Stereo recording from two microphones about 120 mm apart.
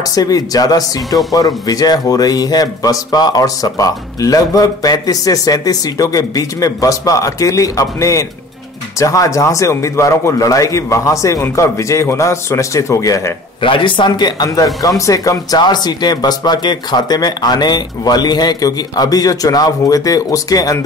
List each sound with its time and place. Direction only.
0.1 s a man's voice: 30° left (ahead or behind)
13.6 s speech: 45° left (ahead or behind); by 20.8 s 30° left (ahead or behind)